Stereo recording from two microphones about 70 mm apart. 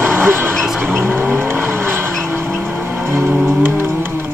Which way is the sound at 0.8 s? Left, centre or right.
Right.